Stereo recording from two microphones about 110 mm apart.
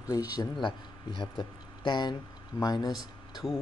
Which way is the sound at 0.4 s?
45° left (ahead or behind).